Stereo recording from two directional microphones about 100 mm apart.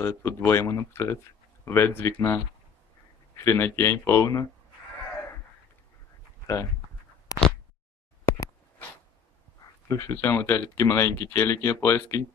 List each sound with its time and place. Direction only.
0.0 s speech: 25° left (ahead or behind)
6.4 s speech: 30° left (ahead or behind)
9.8 s speech: 35° left (ahead or behind)